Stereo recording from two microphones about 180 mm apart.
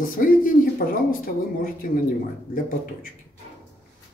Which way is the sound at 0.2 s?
50° left (ahead or behind).